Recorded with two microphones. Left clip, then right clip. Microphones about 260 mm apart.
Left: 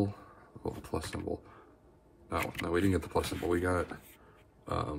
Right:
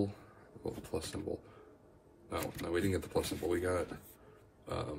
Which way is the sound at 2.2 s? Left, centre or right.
Left.